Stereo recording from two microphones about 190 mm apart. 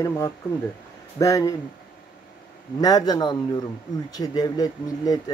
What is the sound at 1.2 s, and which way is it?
Speech, 15° left (ahead or behind).